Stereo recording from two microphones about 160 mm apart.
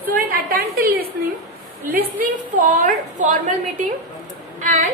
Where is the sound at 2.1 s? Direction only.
55° right (ahead or behind).